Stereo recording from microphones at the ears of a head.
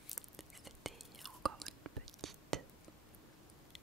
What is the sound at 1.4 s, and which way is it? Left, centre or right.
Whispering, right.